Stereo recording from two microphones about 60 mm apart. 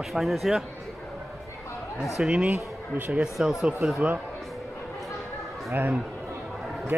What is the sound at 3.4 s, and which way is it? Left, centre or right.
Speech, centre.